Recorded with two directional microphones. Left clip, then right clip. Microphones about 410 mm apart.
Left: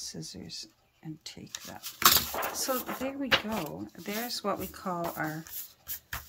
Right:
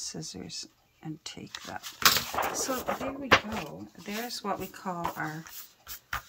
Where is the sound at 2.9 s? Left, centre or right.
Centre.